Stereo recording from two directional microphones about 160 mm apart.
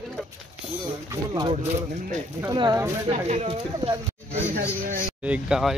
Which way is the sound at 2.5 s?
30° right (ahead or behind).